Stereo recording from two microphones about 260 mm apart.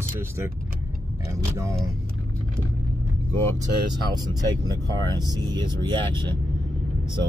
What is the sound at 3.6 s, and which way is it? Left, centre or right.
Speech, centre.